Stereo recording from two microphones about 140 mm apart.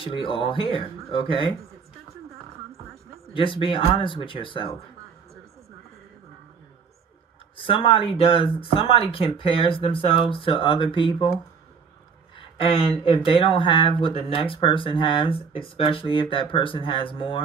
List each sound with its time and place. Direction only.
0.0 s speech: 40° left (ahead or behind)
3.3 s speech: 35° left (ahead or behind)
7.5 s speech: 40° left (ahead or behind)
12.4 s speech: 40° left (ahead or behind)